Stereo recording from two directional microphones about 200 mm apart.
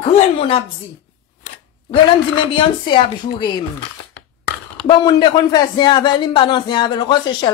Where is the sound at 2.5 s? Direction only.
25° left (ahead or behind).